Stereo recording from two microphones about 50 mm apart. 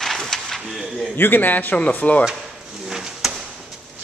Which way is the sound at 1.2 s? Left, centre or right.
Left.